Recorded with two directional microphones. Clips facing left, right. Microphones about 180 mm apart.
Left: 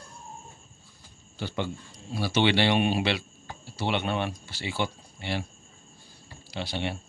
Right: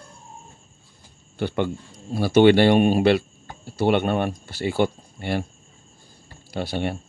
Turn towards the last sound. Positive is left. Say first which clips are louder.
# right 6 dB
turn(degrees=-50)  # may be behind; listen again after turning